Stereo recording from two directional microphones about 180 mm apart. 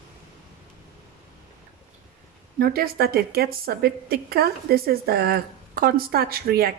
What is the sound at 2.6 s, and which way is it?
A woman's voice, 55° right (ahead or behind).